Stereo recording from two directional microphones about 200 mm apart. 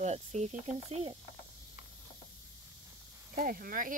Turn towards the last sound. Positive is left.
turn(degrees=-40)  # may be behind; listen again after turning